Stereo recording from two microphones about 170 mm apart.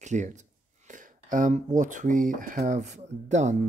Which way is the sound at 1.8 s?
50° right (ahead or behind).